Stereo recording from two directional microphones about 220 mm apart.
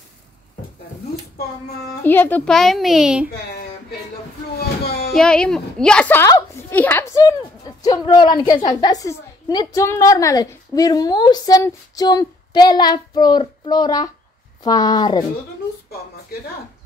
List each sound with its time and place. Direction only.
2.0 s a child's voice: 10° left (ahead or behind)
4.6 s a sound: 45° left (ahead or behind)
5.1 s a woman's voice: 5° left (ahead or behind)